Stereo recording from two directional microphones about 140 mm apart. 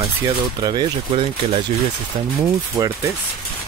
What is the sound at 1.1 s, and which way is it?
Speech, 45° right (ahead or behind).